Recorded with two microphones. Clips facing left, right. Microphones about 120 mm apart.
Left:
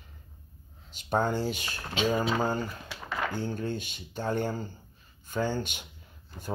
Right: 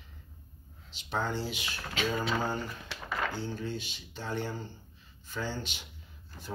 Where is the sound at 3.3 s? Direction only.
50° left (ahead or behind).